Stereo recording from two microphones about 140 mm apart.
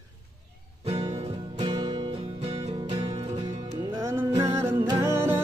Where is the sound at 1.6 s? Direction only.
30° right (ahead or behind).